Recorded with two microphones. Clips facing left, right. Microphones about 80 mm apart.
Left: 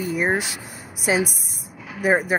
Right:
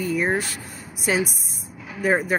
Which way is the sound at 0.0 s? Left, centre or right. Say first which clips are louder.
Even; centre.